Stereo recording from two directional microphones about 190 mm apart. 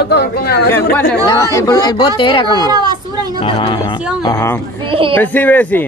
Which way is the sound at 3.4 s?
25° left (ahead or behind).